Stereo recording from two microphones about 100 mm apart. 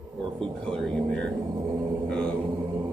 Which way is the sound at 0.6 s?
5° left (ahead or behind).